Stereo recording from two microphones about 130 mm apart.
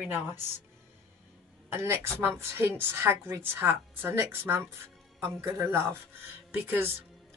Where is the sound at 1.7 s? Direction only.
20° right (ahead or behind).